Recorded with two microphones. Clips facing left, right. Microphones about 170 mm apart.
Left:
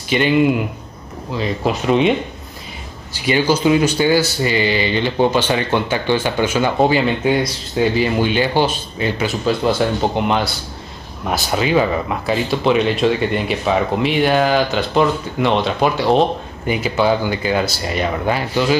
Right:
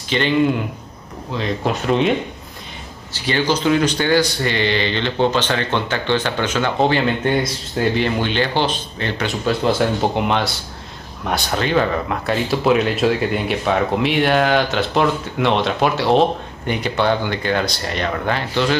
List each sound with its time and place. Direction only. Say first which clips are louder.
0.1 s speech: left 2 dB; 10° left (ahead or behind)